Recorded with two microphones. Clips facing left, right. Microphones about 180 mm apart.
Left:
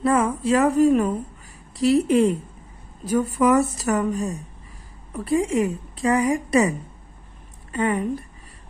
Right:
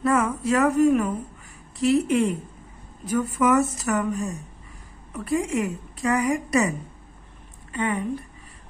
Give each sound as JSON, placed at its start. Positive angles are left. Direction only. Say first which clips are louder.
{"t": 0.0, "sound": "a woman's voice", "louder": "left 2 dB", "side_deg": 30}
{"t": 7.7, "sound": "a woman's voice", "louder": "left 3 dB", "side_deg": 40}